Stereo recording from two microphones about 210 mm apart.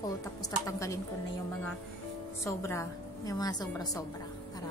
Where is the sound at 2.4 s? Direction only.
15° left (ahead or behind).